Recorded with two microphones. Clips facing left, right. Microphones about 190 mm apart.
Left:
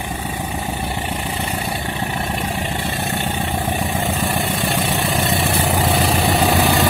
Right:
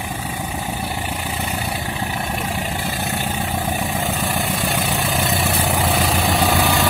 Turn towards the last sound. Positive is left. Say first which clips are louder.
# left 2 dB
turn(degrees=0)  # may be behind; listen again after turning